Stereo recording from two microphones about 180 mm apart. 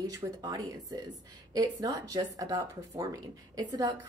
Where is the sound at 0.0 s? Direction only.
20° right (ahead or behind).